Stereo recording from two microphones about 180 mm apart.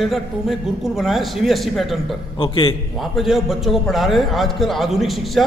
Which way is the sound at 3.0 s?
Centre (ahead or behind).